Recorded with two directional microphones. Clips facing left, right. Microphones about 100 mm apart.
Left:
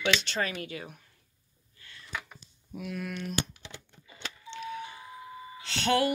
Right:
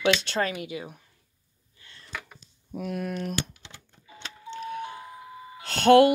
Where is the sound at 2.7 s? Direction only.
40° right (ahead or behind).